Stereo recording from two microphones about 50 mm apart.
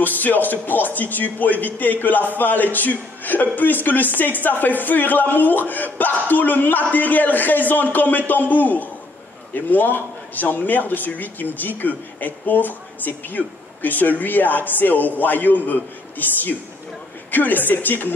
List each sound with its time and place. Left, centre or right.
0.0 s speech: left